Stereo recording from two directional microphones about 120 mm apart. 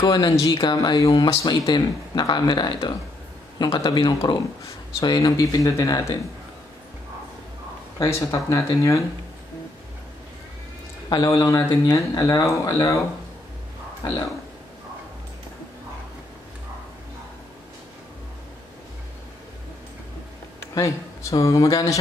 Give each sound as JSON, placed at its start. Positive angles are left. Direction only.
{"t": 0.0, "sound": "speech", "side_deg": 30}
{"t": 8.0, "sound": "speech", "side_deg": 25}
{"t": 11.1, "sound": "speech", "side_deg": 30}
{"t": 20.7, "sound": "a man's voice", "side_deg": 25}